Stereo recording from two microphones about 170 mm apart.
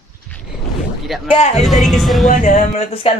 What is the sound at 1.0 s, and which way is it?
Speech, centre (ahead or behind).